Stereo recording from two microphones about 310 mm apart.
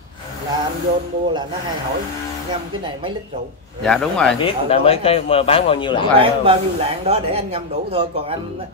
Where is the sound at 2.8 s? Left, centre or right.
Centre.